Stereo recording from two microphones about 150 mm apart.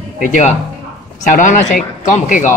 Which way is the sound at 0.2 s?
50° left (ahead or behind).